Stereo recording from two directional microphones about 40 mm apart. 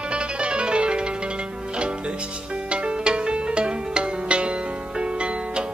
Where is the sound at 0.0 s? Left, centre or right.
Right.